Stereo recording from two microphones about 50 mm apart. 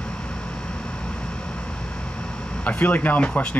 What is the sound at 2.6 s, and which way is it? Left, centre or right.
Speech, left.